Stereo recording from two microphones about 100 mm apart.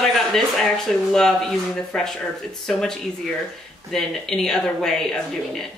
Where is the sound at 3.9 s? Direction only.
5° left (ahead or behind).